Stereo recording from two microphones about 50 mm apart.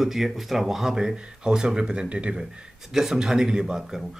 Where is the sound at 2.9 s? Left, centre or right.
Centre.